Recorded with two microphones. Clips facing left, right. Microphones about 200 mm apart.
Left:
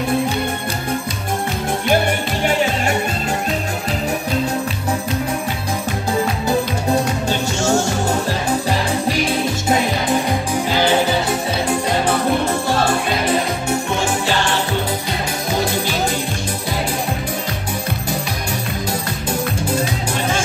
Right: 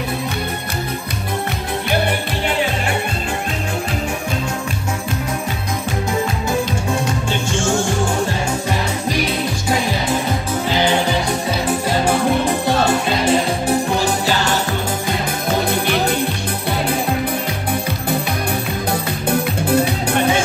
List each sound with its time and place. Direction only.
7.2 s music: 40° left (ahead or behind)
12.1 s music: 15° right (ahead or behind); by 14.5 s 40° right (ahead or behind)
15.7 s music: 60° right (ahead or behind)
19.7 s music: 60° right (ahead or behind)